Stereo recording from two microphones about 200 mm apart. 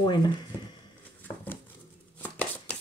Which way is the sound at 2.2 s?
5° left (ahead or behind).